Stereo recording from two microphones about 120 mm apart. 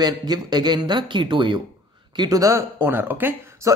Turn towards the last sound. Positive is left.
turn(degrees=-15)  # may be behind; listen again after turning